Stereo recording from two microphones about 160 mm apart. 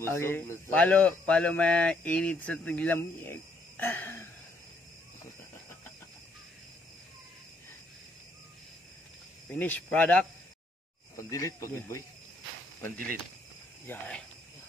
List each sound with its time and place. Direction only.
0.0 s a man's voice: 15° left (ahead or behind)
9.5 s a man's voice: 10° left (ahead or behind)
11.1 s speech: 20° left (ahead or behind)
13.8 s a man's voice: 10° left (ahead or behind)